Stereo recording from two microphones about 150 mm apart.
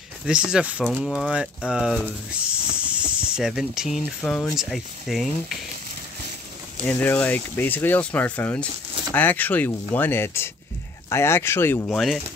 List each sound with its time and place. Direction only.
0.3 s speech: 5° right (ahead or behind)
6.9 s speech: 10° left (ahead or behind)
11.9 s speech: centre (ahead or behind)